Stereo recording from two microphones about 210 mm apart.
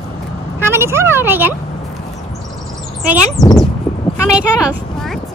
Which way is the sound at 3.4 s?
20° left (ahead or behind).